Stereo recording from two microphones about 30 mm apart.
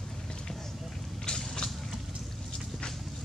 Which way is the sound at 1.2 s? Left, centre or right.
Left.